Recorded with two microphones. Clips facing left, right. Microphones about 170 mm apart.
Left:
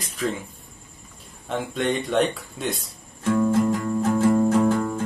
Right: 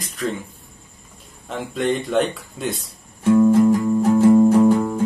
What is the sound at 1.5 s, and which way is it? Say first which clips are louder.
Speech: right 2 dB; centre (ahead or behind).